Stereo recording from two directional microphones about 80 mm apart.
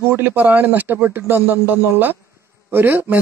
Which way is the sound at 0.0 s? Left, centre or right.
Right.